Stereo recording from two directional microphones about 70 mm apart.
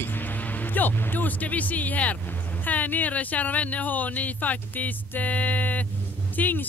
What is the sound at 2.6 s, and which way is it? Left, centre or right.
Speech, left.